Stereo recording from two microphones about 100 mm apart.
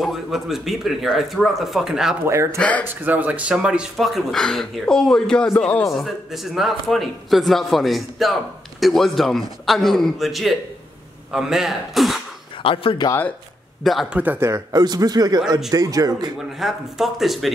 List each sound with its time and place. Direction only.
0.0 s a man's voice: centre (ahead or behind)
2.5 s speech: 15° left (ahead or behind)
2.9 s a man's voice: 15° right (ahead or behind); by 5.9 s 10° left (ahead or behind)
5.9 s a man's voice: centre (ahead or behind)
12.6 s speech: 60° left (ahead or behind)
14.1 s speech: 15° right (ahead or behind)
14.5 s a man's voice: 40° right (ahead or behind)
16.5 s a man's voice: centre (ahead or behind)